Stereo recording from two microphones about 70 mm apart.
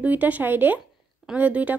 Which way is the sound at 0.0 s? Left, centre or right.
Right.